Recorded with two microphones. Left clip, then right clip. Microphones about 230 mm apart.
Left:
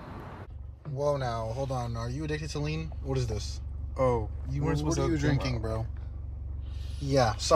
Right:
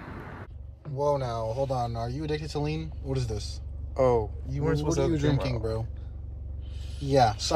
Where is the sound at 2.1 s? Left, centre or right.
Right.